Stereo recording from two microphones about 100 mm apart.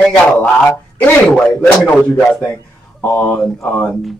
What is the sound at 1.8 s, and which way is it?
Speech, 15° left (ahead or behind).